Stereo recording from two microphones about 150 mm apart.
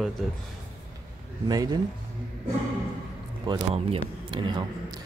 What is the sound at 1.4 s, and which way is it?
Speech, 25° right (ahead or behind).